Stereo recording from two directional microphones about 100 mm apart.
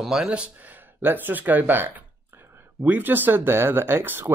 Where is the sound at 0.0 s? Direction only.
5° right (ahead or behind).